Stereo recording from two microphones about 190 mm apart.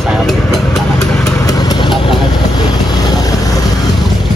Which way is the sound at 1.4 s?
20° left (ahead or behind).